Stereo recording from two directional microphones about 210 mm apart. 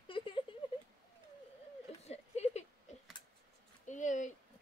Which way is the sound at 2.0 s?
30° left (ahead or behind).